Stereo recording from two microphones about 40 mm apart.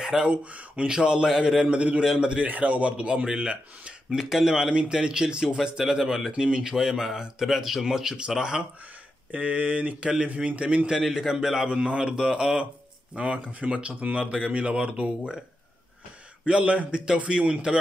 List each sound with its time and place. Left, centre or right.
0.0 s speech: centre
0.3 s speech: right
0.8 s a man's voice: right
1.7 s a man's voice: right
2.4 s speech: right
3.1 s a man's voice: right
4.1 s speech: centre
4.7 s a man's voice: right
9.3 s speech: right
11.1 s speech: centre
11.7 s a man's voice: right
14.2 s a man's voice: right
16.4 s a man's voice: right